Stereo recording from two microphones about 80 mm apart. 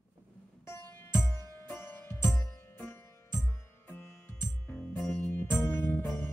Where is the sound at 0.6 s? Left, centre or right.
Left.